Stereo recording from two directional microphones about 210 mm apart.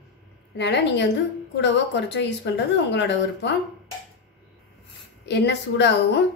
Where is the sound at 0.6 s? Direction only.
55° left (ahead or behind).